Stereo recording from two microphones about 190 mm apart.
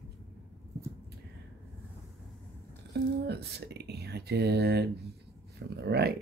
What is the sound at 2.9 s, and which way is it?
Speech, 60° right (ahead or behind).